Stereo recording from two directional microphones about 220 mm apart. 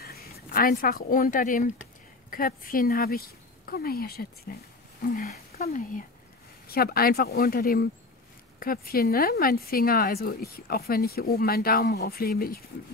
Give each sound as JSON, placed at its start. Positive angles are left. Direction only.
{"t": 0.0, "sound": "speech", "side_deg": 40}